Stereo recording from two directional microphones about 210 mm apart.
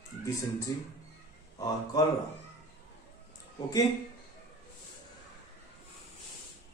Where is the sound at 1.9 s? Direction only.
15° left (ahead or behind).